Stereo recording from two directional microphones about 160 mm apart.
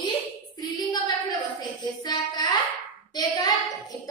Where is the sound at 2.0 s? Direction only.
25° left (ahead or behind).